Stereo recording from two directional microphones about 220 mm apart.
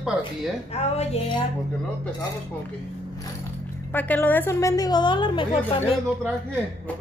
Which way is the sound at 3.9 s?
10° left (ahead or behind).